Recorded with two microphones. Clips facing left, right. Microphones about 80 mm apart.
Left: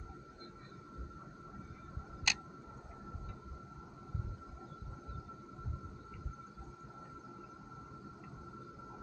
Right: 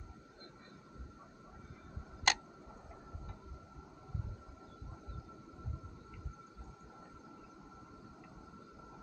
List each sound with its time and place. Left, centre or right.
2.3 s tick: right